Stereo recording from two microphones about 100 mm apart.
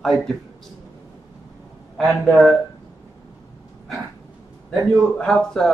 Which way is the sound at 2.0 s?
Centre (ahead or behind).